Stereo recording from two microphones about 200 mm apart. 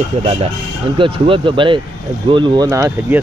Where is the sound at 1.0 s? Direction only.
25° right (ahead or behind).